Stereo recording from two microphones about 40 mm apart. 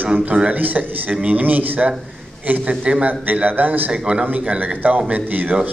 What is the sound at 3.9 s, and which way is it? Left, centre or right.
A man's voice, right.